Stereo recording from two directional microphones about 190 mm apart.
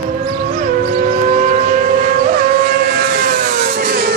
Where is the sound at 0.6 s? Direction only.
40° right (ahead or behind).